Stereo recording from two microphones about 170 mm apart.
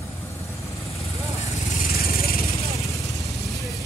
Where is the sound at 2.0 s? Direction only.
60° left (ahead or behind).